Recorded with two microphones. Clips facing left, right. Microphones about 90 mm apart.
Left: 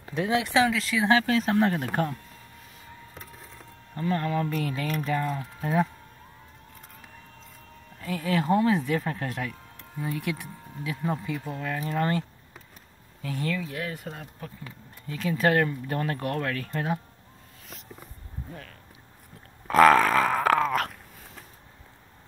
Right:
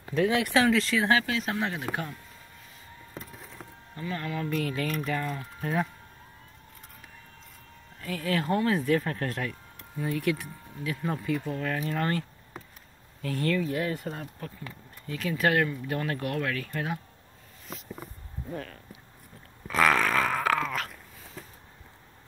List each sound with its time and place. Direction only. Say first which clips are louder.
0.1 s speech: even; 25° left (ahead or behind)
0.7 s speech: right 2 dB; 5° left (ahead or behind)
1.2 s speech: left 7 dB; 35° left (ahead or behind)
3.9 s speech: left 6 dB; 40° left (ahead or behind); by 5.9 s 15° left (ahead or behind)
8.0 s speech: left 2 dB; 20° left (ahead or behind)
13.7 s speech: right 4 dB; centre (ahead or behind)
15.0 s speech: left 2 dB; 25° left (ahead or behind)
19.7 s speech: left 6 dB; 35° left (ahead or behind)